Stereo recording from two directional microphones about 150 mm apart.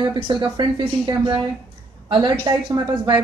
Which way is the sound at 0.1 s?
30° right (ahead or behind).